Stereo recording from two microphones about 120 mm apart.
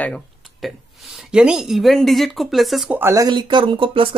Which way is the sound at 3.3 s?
40° right (ahead or behind).